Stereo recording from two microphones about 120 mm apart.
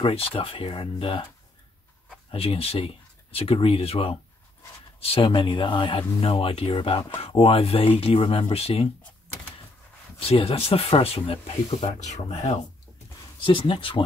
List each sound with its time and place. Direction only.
0.0 s speech: 45° left (ahead or behind)
2.3 s speech: 55° left (ahead or behind)
10.1 s speech: 50° left (ahead or behind); by 12.5 s 70° left (ahead or behind)
13.4 s speech: 45° left (ahead or behind)